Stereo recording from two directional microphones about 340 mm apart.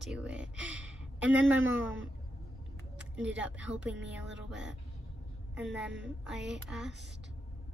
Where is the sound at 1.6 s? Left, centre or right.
Right.